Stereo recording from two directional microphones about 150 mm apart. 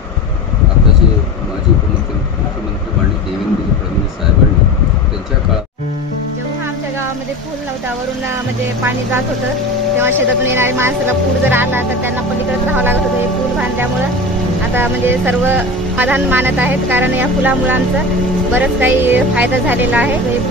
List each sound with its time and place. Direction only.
9.9 s speech: 15° right (ahead or behind)
14.8 s speech: 15° right (ahead or behind)